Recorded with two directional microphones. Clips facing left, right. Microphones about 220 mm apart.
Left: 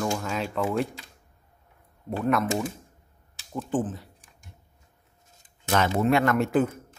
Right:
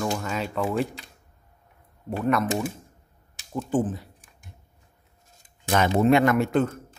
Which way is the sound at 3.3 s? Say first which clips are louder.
Right 3 dB; 10° right (ahead or behind).